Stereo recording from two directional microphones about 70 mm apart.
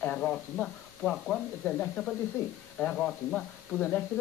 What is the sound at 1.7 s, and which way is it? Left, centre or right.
Speech, centre.